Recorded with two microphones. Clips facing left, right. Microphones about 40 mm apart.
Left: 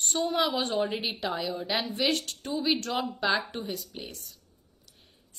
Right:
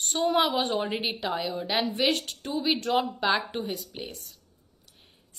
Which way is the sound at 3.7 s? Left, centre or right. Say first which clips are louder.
Right 2 dB; right.